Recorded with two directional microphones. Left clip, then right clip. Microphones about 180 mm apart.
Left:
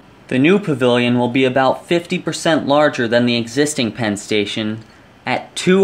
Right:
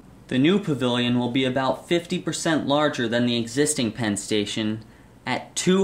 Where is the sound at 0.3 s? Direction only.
20° left (ahead or behind).